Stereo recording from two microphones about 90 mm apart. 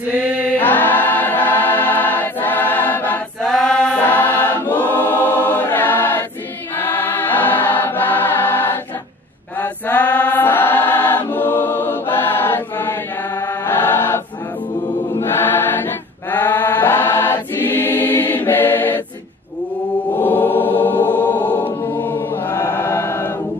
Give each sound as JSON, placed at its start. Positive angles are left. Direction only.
{"t": 0.6, "sound": "choir", "side_deg": 20}
{"t": 3.4, "sound": "a sound", "side_deg": 5}
{"t": 4.0, "sound": "choir", "side_deg": 20}
{"t": 13.5, "sound": "chant", "side_deg": 25}
{"t": 15.1, "sound": "choir", "side_deg": 25}
{"t": 20.2, "sound": "music", "side_deg": 20}
{"t": 21.8, "sound": "choir", "side_deg": 20}